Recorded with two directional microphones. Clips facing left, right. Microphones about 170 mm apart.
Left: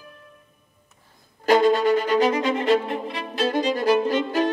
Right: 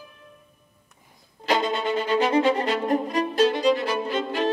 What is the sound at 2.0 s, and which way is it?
Violin, 40° left (ahead or behind).